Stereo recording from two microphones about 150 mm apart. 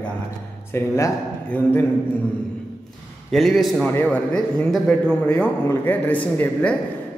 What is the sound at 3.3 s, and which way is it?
A man's voice, centre (ahead or behind).